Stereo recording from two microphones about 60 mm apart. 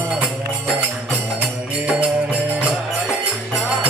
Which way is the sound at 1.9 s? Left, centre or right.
Right.